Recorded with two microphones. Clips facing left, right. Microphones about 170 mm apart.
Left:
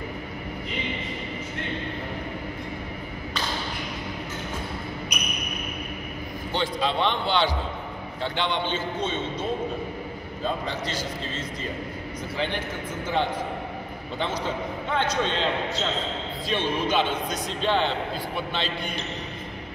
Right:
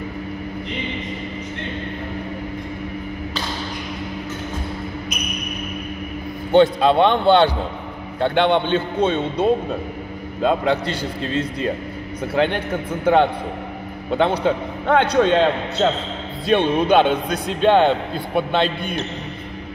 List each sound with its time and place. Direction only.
6.5 s a man's voice: 55° right (ahead or behind)